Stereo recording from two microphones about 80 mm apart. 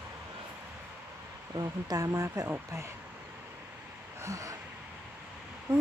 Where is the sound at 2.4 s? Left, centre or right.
Right.